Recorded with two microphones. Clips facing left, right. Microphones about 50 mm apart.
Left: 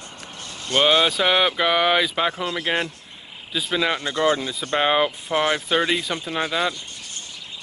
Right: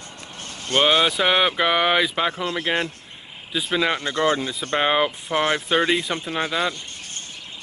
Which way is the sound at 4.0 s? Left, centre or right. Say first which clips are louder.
Even; right.